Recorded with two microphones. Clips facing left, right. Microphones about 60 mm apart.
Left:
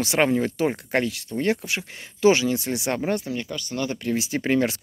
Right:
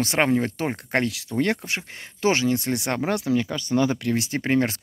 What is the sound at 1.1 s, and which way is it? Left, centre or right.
Speech, right.